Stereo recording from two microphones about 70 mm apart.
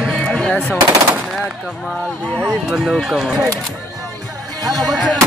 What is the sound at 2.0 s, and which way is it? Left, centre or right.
Speech, centre.